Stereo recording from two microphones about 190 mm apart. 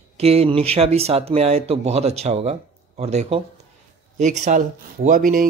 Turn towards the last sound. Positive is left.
turn(degrees=-40)  # may be behind; listen again after turning